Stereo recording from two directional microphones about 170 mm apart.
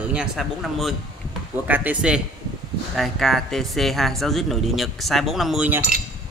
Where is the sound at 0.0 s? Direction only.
5° right (ahead or behind).